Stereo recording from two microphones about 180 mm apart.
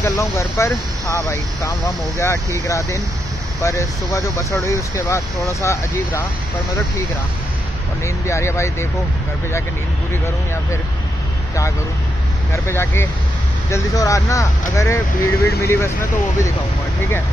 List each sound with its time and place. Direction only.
0.0 s speech: 15° left (ahead or behind)
8.0 s speech: 15° left (ahead or behind)
10.2 s speech: 15° left (ahead or behind)
12.5 s speech: 15° left (ahead or behind)